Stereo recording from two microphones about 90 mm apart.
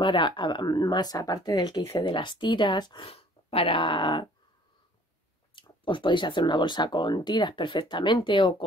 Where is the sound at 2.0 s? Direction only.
60° left (ahead or behind).